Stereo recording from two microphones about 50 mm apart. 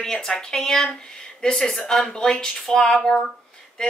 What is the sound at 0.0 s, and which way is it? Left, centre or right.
Speech, centre.